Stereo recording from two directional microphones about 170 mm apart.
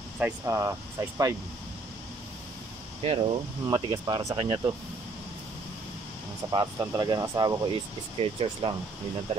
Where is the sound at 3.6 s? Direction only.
25° right (ahead or behind).